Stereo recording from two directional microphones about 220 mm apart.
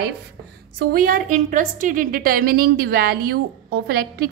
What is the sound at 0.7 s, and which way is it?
A woman's voice, 40° right (ahead or behind).